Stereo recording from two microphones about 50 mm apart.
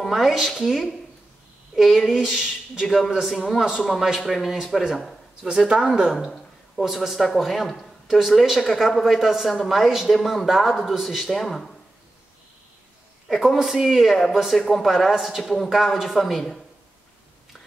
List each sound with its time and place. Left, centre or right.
0.0 s a woman's voice: centre
2.8 s a woman's voice: centre
3.4 s a woman's voice: centre
5.5 s speech: centre
6.9 s a woman's voice: centre
13.3 s a woman's voice: centre